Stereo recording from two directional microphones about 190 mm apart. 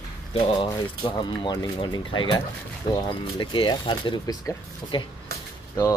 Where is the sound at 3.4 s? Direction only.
25° left (ahead or behind).